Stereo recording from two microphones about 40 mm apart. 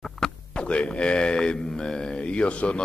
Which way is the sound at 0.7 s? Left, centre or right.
Left.